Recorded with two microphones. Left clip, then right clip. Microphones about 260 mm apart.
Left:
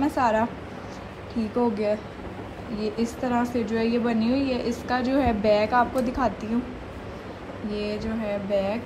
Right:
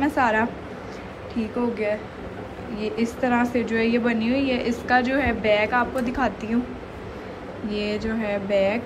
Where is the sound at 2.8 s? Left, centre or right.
Centre.